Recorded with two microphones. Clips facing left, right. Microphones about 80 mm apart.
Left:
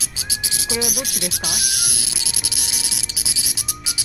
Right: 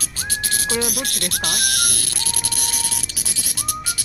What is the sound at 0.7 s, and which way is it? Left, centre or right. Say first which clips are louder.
Speech: even; centre.